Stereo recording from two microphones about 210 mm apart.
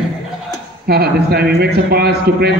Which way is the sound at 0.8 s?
50° right (ahead or behind).